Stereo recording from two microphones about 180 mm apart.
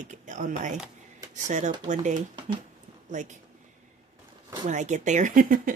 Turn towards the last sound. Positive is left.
turn(degrees=-50)  # may be behind; listen again after turning